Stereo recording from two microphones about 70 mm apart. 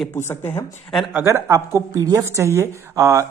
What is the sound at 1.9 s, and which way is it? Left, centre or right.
Speech, right.